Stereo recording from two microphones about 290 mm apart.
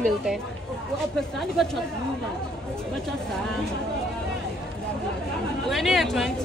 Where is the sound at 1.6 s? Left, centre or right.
Centre.